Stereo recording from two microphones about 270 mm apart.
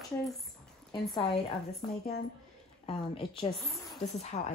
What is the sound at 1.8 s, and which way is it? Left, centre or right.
Speech, left.